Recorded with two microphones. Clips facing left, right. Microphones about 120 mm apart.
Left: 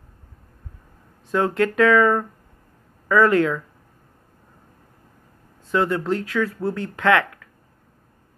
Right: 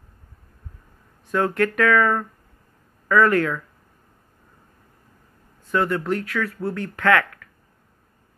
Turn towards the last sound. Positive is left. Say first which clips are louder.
# left 1 dB
turn(degrees=20)  # may be behind; listen again after turning